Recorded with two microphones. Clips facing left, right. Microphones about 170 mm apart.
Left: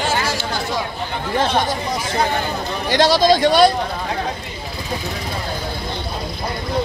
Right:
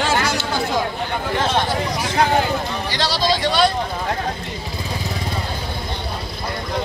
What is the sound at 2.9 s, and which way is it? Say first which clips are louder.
Speech: left 8 dB; 50° left (ahead or behind).